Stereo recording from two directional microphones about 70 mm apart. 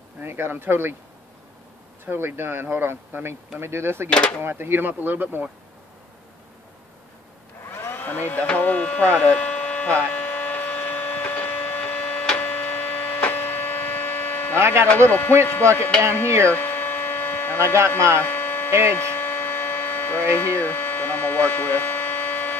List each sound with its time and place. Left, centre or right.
0.2 s speech: right
2.0 s speech: right
4.1 s speech: centre
4.4 s speech: right
7.7 s a sound: left
12.4 s hum: left
14.6 s speech: right
15.0 s speech: left
16.4 s hum: left
18.7 s speech: right
18.9 s hum: left